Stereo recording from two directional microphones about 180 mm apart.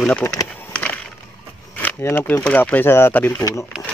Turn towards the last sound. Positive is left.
turn(degrees=10)  # may be behind; listen again after turning